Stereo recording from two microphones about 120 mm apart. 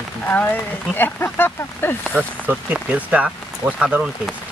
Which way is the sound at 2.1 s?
15° right (ahead or behind).